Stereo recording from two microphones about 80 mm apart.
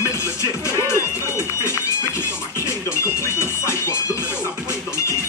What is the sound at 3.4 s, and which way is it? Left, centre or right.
Music, left.